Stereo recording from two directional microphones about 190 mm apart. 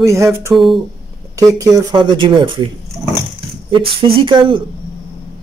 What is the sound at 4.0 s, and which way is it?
Speech, 25° right (ahead or behind).